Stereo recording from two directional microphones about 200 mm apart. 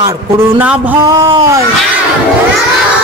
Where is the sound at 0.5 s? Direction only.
5° right (ahead or behind).